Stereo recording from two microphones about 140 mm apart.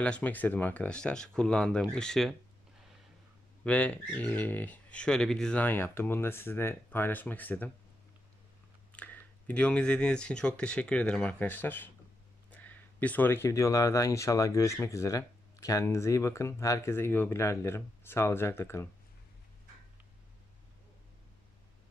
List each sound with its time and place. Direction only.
0.0 s speech: 10° left (ahead or behind)
3.6 s speech: 10° left (ahead or behind)
8.9 s speech: 10° left (ahead or behind)